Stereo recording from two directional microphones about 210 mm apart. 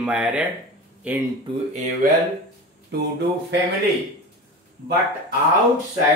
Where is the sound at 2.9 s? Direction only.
50° right (ahead or behind).